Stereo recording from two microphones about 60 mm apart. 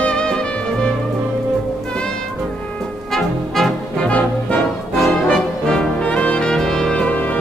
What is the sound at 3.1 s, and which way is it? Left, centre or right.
Music, centre.